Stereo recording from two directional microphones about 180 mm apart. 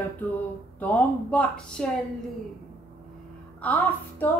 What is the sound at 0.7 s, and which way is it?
A woman's voice, 10° left (ahead or behind).